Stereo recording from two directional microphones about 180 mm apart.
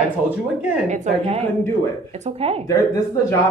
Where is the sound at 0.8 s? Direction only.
35° right (ahead or behind).